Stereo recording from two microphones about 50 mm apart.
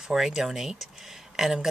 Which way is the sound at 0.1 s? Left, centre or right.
Centre.